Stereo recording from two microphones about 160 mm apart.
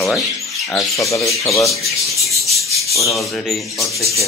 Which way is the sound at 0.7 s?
20° left (ahead or behind).